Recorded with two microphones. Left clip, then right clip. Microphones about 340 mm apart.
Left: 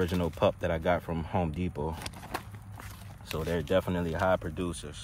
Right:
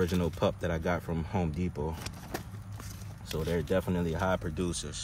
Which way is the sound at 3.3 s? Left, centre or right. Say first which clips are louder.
Left 2 dB; centre.